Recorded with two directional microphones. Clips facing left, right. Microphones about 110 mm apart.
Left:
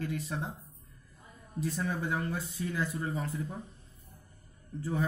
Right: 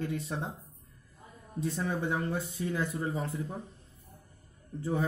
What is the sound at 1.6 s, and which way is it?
Speech, 25° right (ahead or behind).